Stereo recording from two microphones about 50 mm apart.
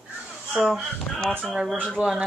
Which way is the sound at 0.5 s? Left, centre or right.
Centre.